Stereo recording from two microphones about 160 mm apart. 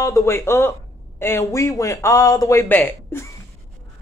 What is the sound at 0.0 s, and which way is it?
Speech, 20° left (ahead or behind).